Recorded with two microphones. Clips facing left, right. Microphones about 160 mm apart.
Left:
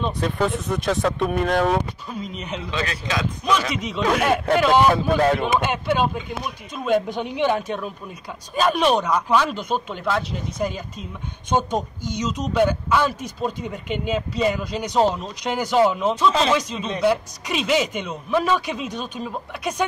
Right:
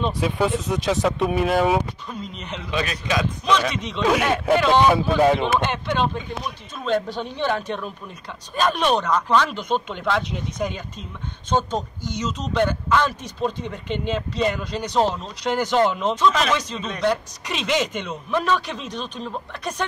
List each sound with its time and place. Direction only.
0.0 s speech: 5° right (ahead or behind)
2.0 s speech: 5° left (ahead or behind)
2.7 s a man's voice: 20° right (ahead or behind)
3.4 s speech: 10° left (ahead or behind)
5.6 s speech: 10° left (ahead or behind)